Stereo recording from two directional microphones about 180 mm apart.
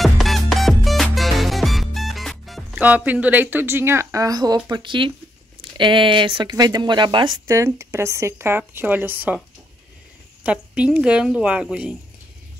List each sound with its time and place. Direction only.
0.0 s music: centre (ahead or behind); by 4.6 s 20° right (ahead or behind)
4.6 s speech: 25° right (ahead or behind); by 9.4 s 10° right (ahead or behind)
10.4 s speech: 5° right (ahead or behind)